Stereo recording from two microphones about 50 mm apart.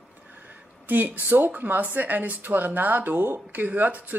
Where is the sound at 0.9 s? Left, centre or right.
Right.